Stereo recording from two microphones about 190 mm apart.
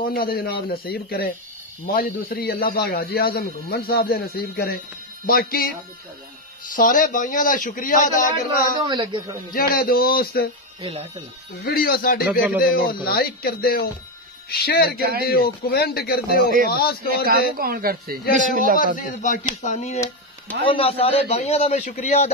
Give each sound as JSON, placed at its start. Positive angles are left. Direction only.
{"t": 0.0, "sound": "a man's voice", "side_deg": 50}
{"t": 6.7, "sound": "a man's voice", "side_deg": 45}
{"t": 8.8, "sound": "speech", "side_deg": -25}
{"t": 9.5, "sound": "a man's voice", "side_deg": 50}
{"t": 10.8, "sound": "speech", "side_deg": -30}
{"t": 11.6, "sound": "a man's voice", "side_deg": 50}
{"t": 15.0, "sound": "speech", "side_deg": -55}
{"t": 15.2, "sound": "a man's voice", "side_deg": 55}
{"t": 17.6, "sound": "speech", "side_deg": -50}
{"t": 18.9, "sound": "a man's voice", "side_deg": 45}